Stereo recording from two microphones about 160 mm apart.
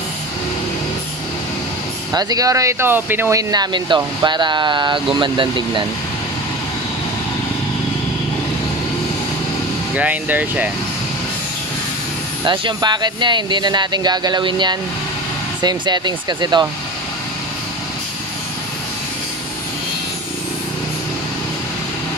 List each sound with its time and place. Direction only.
2.1 s speech: 25° right (ahead or behind)
9.9 s speech: 10° right (ahead or behind)
12.4 s speech: 30° right (ahead or behind)